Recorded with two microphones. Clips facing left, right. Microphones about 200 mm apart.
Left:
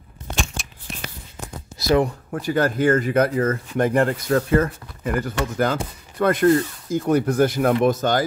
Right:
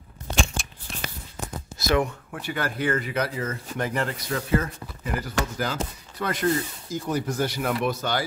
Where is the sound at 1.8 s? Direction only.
35° left (ahead or behind).